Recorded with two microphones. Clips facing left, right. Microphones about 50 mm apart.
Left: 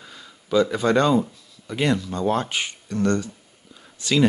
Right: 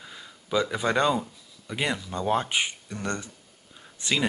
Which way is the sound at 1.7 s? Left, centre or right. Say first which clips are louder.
Left 6 dB; centre.